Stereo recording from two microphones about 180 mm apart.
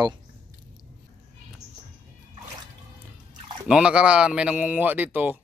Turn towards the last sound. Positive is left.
turn(degrees=-10)  # may be behind; listen again after turning